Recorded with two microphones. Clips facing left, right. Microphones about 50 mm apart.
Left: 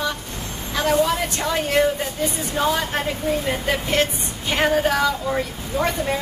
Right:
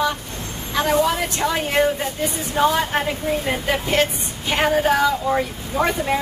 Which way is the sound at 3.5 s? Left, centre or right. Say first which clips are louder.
Right 1 dB; centre.